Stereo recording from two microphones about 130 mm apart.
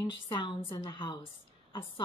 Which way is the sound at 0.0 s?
35° left (ahead or behind).